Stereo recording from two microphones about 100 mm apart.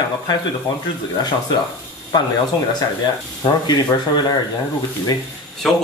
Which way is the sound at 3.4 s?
45° left (ahead or behind).